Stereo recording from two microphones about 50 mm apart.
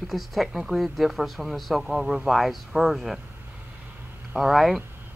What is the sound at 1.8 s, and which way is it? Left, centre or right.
Speech, centre.